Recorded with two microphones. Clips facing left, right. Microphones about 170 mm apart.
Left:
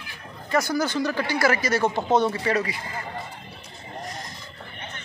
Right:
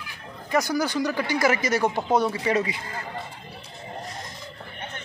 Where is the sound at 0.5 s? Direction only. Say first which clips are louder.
Even; 15° right (ahead or behind).